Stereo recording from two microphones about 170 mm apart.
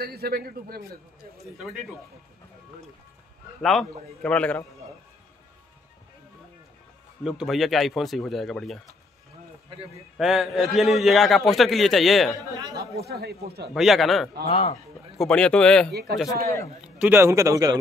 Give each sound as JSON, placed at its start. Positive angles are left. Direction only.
{"t": 0.0, "sound": "a man's voice", "side_deg": -65}
{"t": 3.6, "sound": "a man's voice", "side_deg": 5}
{"t": 7.2, "sound": "a man's voice", "side_deg": 0}
{"t": 10.1, "sound": "a man's voice", "side_deg": 0}
{"t": 12.5, "sound": "speech", "side_deg": -25}
{"t": 13.0, "sound": "speech", "side_deg": -70}
{"t": 13.7, "sound": "a man's voice", "side_deg": 0}
{"t": 14.5, "sound": "speech", "side_deg": 40}
{"t": 15.1, "sound": "a man's voice", "side_deg": 5}
{"t": 15.9, "sound": "speech", "side_deg": -70}
{"t": 16.8, "sound": "a man's voice", "side_deg": -10}